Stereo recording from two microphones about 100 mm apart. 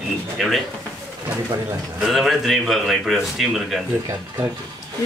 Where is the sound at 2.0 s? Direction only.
Centre (ahead or behind).